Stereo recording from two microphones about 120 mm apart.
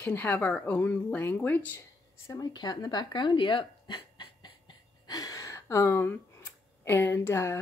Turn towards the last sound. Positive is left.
turn(degrees=25)  # may be behind; listen again after turning